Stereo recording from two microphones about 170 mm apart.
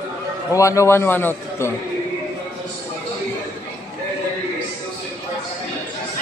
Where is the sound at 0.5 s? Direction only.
20° left (ahead or behind).